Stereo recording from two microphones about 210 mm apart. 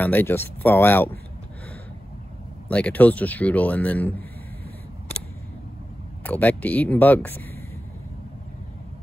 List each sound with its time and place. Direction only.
0.0 s speech: 10° left (ahead or behind)
2.7 s speech: 5° left (ahead or behind)
6.2 s speech: 5° left (ahead or behind)